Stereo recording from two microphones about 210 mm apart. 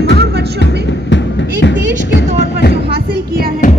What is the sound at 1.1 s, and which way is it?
Music, 60° left (ahead or behind).